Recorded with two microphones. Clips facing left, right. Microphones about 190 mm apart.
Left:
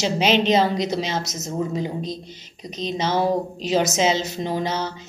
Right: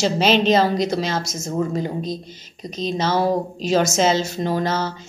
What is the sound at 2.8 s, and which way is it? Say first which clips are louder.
Speech: right 2 dB; 15° left (ahead or behind).